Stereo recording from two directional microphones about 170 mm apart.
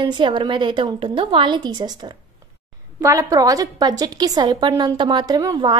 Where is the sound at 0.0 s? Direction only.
30° right (ahead or behind).